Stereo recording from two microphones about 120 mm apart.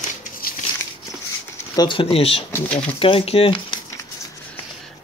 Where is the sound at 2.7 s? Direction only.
10° left (ahead or behind).